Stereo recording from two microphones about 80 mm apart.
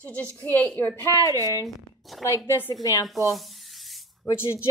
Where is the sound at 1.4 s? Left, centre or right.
Left.